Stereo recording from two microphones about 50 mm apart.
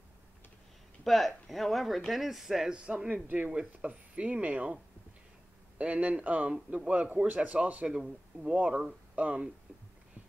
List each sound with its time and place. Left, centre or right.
1.0 s speech: centre
2.7 s speech: right
5.8 s speech: right
7.9 s speech: centre